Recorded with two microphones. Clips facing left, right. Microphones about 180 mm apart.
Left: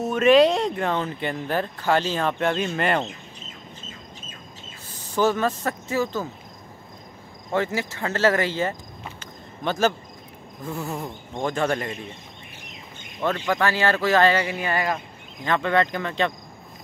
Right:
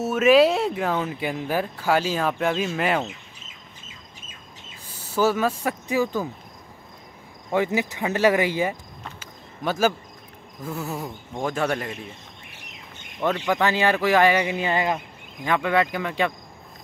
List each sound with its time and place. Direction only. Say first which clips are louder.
0.0 s speech: even; 5° right (ahead or behind)
5.0 s speech: even; 5° right (ahead or behind)
7.5 s speech: right 2 dB; 15° right (ahead or behind)
9.2 s a sound: even; 10° right (ahead or behind)
10.6 s speech: even; 5° right (ahead or behind)
13.2 s speech: right 1 dB; 15° right (ahead or behind)
15.4 s speech: even; 10° right (ahead or behind)